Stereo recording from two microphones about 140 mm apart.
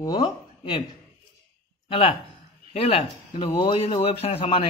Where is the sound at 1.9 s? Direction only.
40° left (ahead or behind).